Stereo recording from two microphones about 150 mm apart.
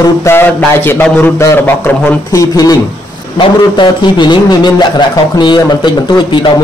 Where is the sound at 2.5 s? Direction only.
25° left (ahead or behind).